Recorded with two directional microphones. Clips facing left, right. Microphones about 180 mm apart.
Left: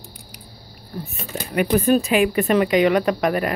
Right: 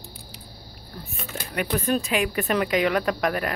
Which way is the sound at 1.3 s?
15° left (ahead or behind).